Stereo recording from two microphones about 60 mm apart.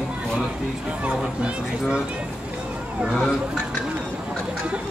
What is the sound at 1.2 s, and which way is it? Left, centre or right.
Speech, centre.